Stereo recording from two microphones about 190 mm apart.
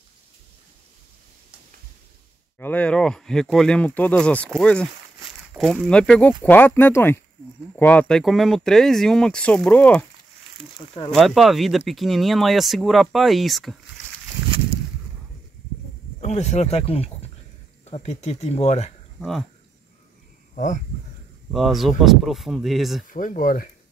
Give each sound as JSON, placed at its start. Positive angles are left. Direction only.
{"t": 2.6, "sound": "speech", "side_deg": 5}
{"t": 11.1, "sound": "speech", "side_deg": 0}
{"t": 16.2, "sound": "speech", "side_deg": 35}
{"t": 19.1, "sound": "speech", "side_deg": 0}
{"t": 20.5, "sound": "speech", "side_deg": 40}
{"t": 21.5, "sound": "speech", "side_deg": 0}
{"t": 23.0, "sound": "speech", "side_deg": 45}